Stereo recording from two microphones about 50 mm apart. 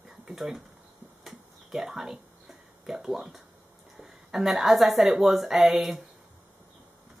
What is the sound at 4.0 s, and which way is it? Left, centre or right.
A woman's voice, centre.